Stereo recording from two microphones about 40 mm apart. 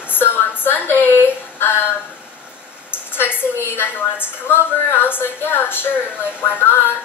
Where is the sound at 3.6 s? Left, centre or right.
Left.